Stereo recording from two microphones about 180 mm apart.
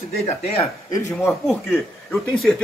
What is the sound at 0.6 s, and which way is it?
Speech, 15° left (ahead or behind).